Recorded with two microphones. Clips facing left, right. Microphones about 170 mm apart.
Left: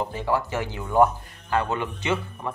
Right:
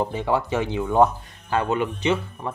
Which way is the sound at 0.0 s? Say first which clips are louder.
Right 2 dB; 20° right (ahead or behind).